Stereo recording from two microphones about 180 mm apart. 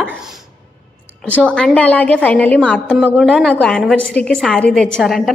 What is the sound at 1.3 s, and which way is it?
A woman's voice, 5° left (ahead or behind).